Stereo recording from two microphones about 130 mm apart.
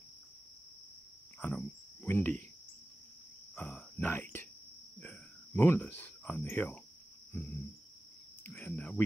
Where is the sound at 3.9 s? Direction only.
15° left (ahead or behind).